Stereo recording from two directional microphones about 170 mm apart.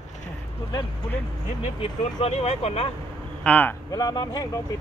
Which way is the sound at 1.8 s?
35° left (ahead or behind).